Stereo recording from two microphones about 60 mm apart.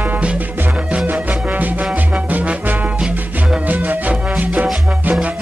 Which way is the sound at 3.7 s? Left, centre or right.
Right.